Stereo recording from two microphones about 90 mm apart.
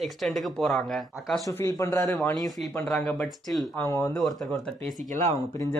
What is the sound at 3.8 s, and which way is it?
Speech, 35° left (ahead or behind).